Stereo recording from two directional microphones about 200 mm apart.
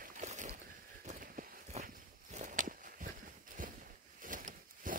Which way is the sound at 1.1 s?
40° right (ahead or behind).